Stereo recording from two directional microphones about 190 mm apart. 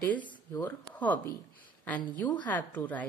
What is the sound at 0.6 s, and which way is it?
Speech, 10° left (ahead or behind).